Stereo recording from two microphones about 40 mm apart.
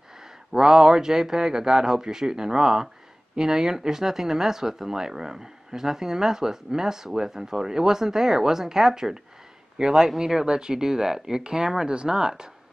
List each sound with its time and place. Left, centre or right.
0.2 s speech: centre